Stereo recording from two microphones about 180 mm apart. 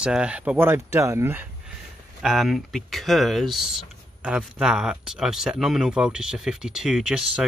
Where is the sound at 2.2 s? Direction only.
Centre (ahead or behind).